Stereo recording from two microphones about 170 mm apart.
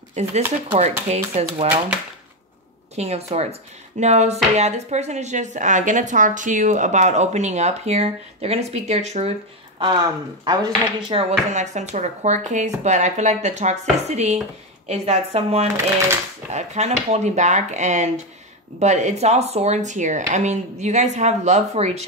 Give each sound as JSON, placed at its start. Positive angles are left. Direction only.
{"t": 0.1, "sound": "speech", "side_deg": -40}
{"t": 3.0, "sound": "speech", "side_deg": -40}
{"t": 10.4, "sound": "speech", "side_deg": -25}